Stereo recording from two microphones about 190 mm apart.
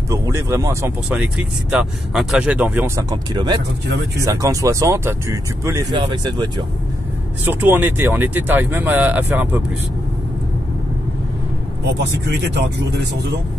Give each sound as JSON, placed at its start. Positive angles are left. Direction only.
{"t": 0.1, "sound": "speech", "side_deg": -15}
{"t": 1.1, "sound": "speech", "side_deg": -5}
{"t": 7.4, "sound": "speech", "side_deg": -10}